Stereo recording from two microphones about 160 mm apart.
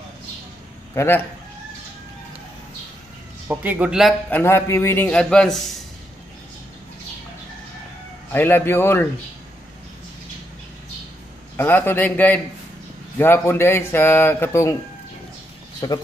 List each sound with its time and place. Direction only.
0.9 s speech: 15° left (ahead or behind)
3.4 s speech: 10° right (ahead or behind)
4.3 s speech: 15° left (ahead or behind)
8.3 s speech: 10° left (ahead or behind)
11.5 s speech: 15° left (ahead or behind)
15.8 s speech: 25° left (ahead or behind)